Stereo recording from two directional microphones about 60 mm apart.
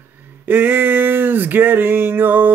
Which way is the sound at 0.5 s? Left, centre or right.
Right.